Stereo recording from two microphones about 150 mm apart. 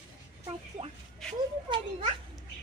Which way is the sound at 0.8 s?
40° right (ahead or behind).